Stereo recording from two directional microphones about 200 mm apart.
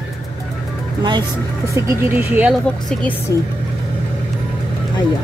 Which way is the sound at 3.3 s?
15° left (ahead or behind).